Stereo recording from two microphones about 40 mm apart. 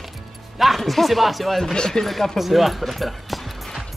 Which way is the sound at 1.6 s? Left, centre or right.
Centre.